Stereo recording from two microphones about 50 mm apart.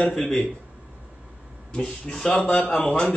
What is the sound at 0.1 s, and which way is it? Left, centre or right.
Speech, centre.